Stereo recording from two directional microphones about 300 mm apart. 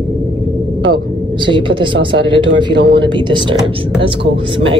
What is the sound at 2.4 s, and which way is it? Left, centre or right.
Speech, right.